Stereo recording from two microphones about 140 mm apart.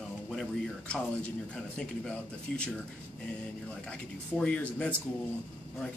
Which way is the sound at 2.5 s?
5° left (ahead or behind).